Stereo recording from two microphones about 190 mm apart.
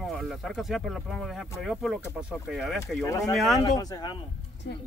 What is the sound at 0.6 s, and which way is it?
Speech, centre (ahead or behind).